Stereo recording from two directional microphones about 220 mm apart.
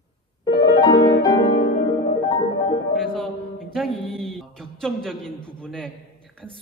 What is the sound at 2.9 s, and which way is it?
Music, centre (ahead or behind).